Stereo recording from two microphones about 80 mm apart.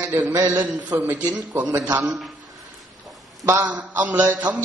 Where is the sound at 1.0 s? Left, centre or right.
Centre.